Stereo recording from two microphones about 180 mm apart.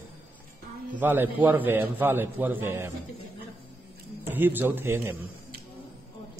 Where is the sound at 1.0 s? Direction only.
10° right (ahead or behind).